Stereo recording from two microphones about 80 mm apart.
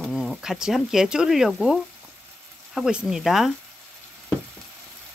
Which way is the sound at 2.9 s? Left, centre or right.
Centre.